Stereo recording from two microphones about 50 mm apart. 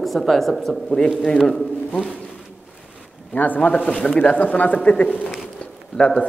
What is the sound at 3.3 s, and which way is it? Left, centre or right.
Speech, left.